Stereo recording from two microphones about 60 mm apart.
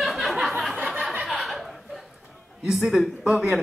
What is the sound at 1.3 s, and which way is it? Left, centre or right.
Chuckle, centre.